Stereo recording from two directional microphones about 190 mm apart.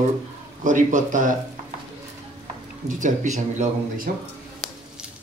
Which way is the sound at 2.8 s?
40° right (ahead or behind).